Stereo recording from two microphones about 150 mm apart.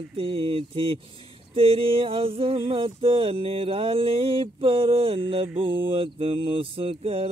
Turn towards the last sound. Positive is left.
turn(degrees=-40)  # may be behind; listen again after turning